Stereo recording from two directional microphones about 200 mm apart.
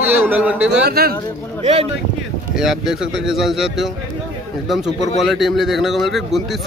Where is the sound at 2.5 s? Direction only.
5° right (ahead or behind).